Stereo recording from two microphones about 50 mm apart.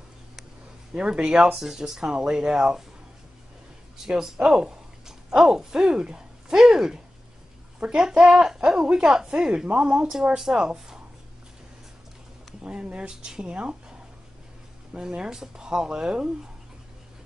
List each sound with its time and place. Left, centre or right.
0.9 s speech: centre
4.1 s speech: centre
12.6 s speech: right
15.0 s speech: centre